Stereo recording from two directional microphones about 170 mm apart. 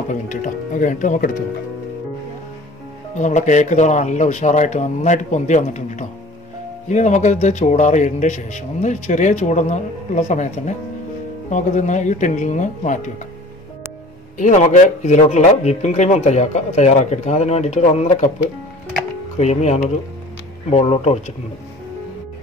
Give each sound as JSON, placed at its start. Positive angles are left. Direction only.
{"t": 0.1, "sound": "speech", "side_deg": 50}
{"t": 3.2, "sound": "speech", "side_deg": 45}
{"t": 14.4, "sound": "speech", "side_deg": 45}
{"t": 19.3, "sound": "speech", "side_deg": 40}